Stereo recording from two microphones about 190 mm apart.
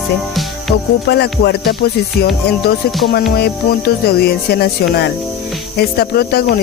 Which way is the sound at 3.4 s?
55° left (ahead or behind).